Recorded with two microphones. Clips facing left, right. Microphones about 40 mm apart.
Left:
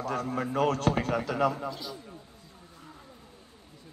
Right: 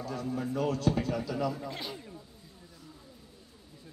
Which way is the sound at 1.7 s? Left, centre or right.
Right.